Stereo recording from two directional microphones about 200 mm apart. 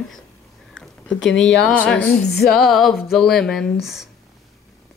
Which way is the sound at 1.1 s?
70° left (ahead or behind).